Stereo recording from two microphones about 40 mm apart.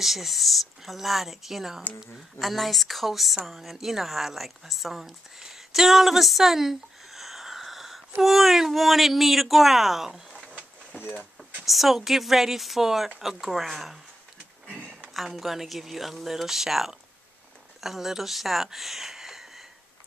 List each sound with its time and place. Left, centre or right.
0.0 s speech: centre
2.3 s speech: centre
5.4 s a sound: centre
8.2 s speech: centre
11.0 s speech: left
11.6 s speech: centre
15.2 s speech: centre